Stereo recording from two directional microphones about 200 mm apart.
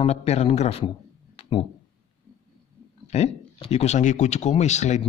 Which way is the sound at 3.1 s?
30° left (ahead or behind).